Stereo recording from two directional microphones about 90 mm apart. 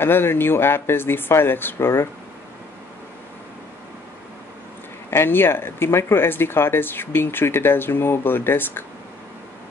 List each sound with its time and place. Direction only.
0.0 s speech: 25° left (ahead or behind)
5.1 s speech: 25° left (ahead or behind)